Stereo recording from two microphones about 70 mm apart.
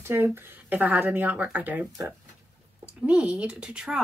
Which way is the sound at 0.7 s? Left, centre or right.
Right.